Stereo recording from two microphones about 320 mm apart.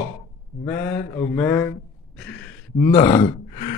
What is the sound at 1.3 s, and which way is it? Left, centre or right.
Speech, centre.